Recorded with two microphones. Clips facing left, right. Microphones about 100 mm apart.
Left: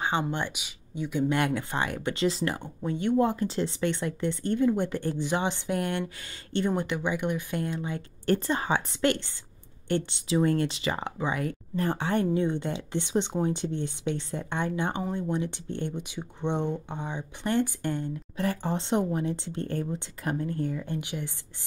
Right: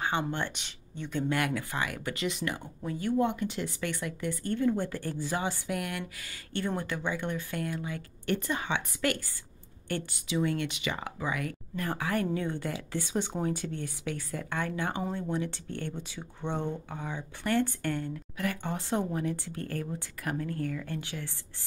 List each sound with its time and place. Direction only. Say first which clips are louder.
0.0 s speech: left 2 dB; 20° left (ahead or behind)
1.3 s a woman's voice: left 3 dB; 25° left (ahead or behind)
10.3 s a woman's voice: left 5 dB; 40° left (ahead or behind); by 18.4 s 20° left (ahead or behind)
18.4 s speech: left 4 dB; 30° left (ahead or behind)